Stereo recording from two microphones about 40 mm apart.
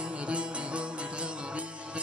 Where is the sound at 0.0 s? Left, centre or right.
Right.